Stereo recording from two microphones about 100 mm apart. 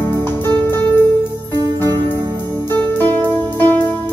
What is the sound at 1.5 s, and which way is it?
Music, 35° right (ahead or behind).